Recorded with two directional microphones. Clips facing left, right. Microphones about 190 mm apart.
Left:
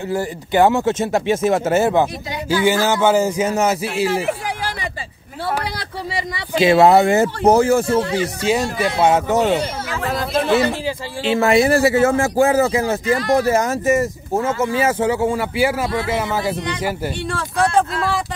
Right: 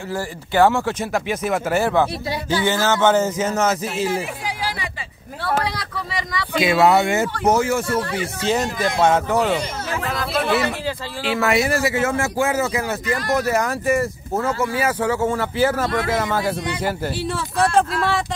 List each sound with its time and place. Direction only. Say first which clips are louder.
0.1 s a man's voice: left 3 dB; 20° left (ahead or behind)
4.3 s a sound: left 4 dB; 50° left (ahead or behind)
5.8 s speech: left 2 dB; 30° left (ahead or behind)
8.7 s speech: left 2 dB; 15° left (ahead or behind)
10.1 s a sound: left 4 dB; 25° left (ahead or behind)
11.2 s a man's voice: left 5 dB; 30° left (ahead or behind); by 16.5 s 10° left (ahead or behind)
17.2 s speech: left 1 dB; 5° right (ahead or behind)